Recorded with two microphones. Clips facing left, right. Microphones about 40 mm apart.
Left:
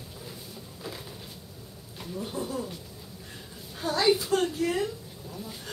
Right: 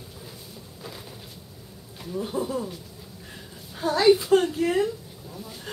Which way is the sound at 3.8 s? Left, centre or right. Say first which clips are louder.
Right 6 dB; centre.